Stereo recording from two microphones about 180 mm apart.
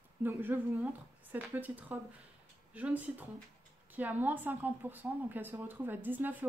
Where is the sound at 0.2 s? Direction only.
10° right (ahead or behind).